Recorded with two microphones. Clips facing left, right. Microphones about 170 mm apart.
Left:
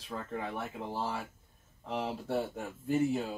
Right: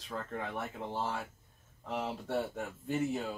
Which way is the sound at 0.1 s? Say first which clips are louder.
Left 1 dB; 5° left (ahead or behind).